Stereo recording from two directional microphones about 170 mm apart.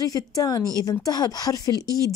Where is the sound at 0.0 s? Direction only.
20° left (ahead or behind).